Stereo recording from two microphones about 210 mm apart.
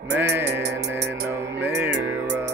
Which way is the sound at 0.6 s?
55° right (ahead or behind).